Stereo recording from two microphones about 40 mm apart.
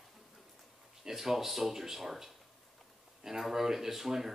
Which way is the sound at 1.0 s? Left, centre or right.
Centre.